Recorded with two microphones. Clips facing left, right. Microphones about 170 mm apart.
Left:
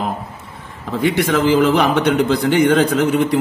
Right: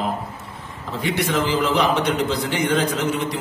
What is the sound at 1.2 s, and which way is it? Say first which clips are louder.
A man's voice: left 7 dB; 55° left (ahead or behind).